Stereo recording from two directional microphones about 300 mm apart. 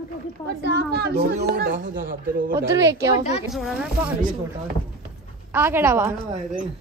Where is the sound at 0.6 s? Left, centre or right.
Right.